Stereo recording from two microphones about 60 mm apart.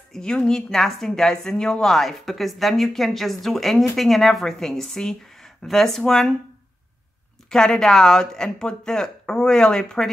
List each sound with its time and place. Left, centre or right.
0.1 s a woman's voice: centre
7.4 s speech: centre